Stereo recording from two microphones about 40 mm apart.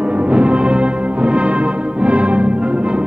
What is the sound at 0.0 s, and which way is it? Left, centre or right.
Music, right.